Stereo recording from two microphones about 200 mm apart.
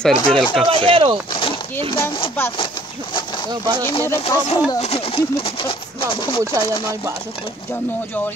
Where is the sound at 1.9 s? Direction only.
15° left (ahead or behind).